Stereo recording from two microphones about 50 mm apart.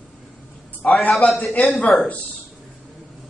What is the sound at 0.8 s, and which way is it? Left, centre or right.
Speech, centre.